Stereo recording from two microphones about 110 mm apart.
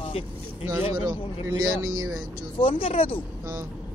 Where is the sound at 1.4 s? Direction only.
30° right (ahead or behind).